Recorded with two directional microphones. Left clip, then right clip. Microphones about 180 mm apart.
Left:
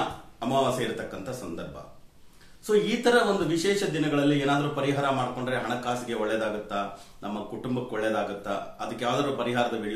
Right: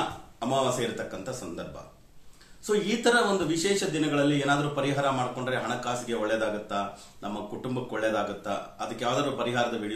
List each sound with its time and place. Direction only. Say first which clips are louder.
0.4 s speech: left 1 dB; 15° right (ahead or behind)
2.6 s speech: left 2 dB; 15° right (ahead or behind)